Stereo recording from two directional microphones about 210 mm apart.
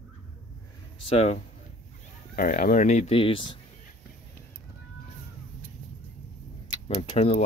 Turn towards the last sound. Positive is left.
turn(degrees=30)  # may be behind; listen again after turning